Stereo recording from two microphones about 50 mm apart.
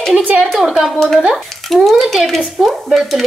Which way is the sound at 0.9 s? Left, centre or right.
Centre.